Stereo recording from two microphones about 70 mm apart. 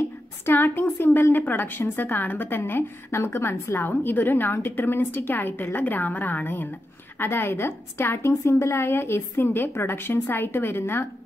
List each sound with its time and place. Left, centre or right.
0.0 s a woman's voice: left